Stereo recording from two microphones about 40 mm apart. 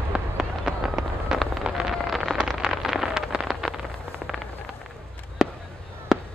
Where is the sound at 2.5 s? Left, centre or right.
Centre.